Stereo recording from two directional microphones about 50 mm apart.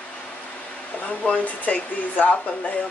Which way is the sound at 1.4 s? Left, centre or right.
Left.